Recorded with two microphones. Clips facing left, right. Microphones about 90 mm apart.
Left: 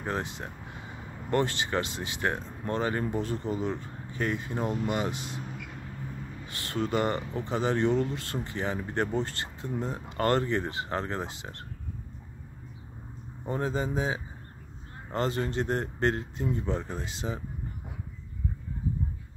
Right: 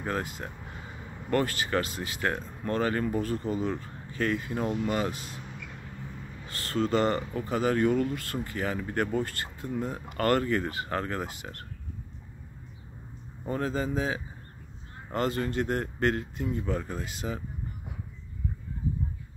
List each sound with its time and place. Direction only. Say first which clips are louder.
0.0 s speech: right 1 dB; 20° left (ahead or behind)
6.4 s speech: right 3 dB; 20° left (ahead or behind)
13.5 s speech: even; 20° left (ahead or behind)